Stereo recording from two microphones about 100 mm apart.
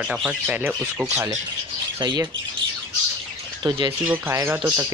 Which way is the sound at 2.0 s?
50° right (ahead or behind).